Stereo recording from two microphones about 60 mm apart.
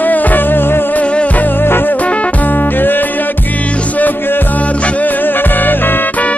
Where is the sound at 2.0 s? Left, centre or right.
Left.